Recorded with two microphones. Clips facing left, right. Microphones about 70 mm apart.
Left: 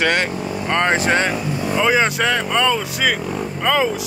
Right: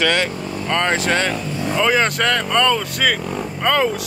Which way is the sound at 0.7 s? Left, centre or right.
Centre.